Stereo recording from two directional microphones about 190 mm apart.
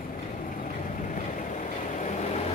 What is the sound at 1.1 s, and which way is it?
Vehicle, 40° left (ahead or behind).